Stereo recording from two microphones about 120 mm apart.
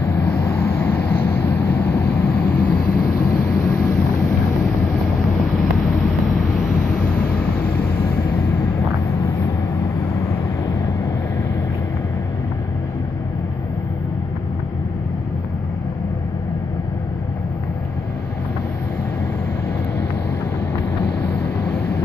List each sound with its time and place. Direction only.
0.4 s vehicle: 20° left (ahead or behind)
3.3 s vehicle: 25° left (ahead or behind)
5.6 s vehicle: centre (ahead or behind)